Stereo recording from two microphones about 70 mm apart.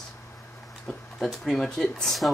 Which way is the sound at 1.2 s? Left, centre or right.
Centre.